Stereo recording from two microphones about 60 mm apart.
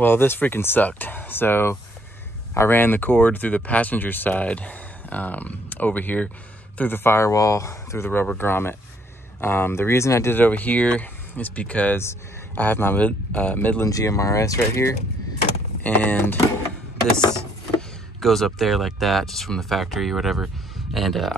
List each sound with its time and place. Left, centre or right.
0.0 s speech: left
7.3 s speech: left
8.4 s speech: left
10.3 s speech: left
13.8 s speech: left
15.8 s speech: left
18.2 s speech: centre